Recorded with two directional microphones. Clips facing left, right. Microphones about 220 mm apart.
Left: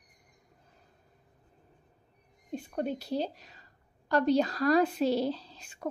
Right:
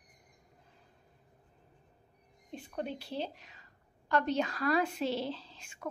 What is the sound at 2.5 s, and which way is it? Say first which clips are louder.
A woman's voice: left 6 dB; 40° left (ahead or behind).